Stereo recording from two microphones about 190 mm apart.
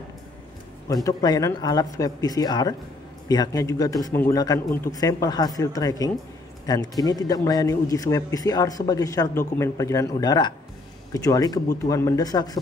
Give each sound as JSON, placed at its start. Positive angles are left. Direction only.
{"t": 0.8, "sound": "a man's voice", "side_deg": 20}